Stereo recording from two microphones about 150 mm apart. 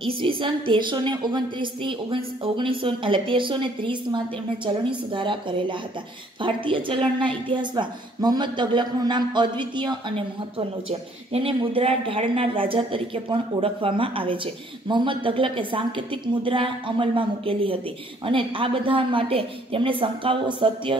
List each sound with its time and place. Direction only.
0.2 s a woman's voice: 35° right (ahead or behind)